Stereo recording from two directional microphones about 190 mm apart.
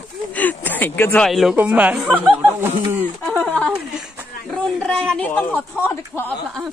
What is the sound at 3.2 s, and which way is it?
Speech, 5° left (ahead or behind).